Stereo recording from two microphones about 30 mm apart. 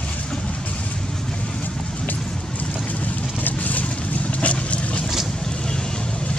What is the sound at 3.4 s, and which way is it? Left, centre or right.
Vehicle, left.